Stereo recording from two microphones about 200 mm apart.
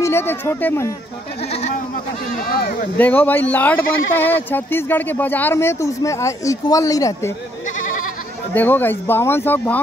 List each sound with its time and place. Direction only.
0.0 s speech: 10° left (ahead or behind)
2.5 s speech: 45° left (ahead or behind)
3.0 s speech: 10° left (ahead or behind)
8.5 s speech: 10° left (ahead or behind)